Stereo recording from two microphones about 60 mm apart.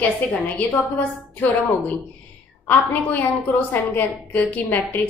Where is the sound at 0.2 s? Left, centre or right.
Left.